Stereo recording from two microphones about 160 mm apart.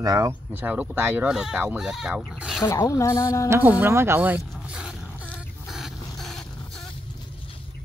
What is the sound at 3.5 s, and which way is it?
Speech, 10° right (ahead or behind).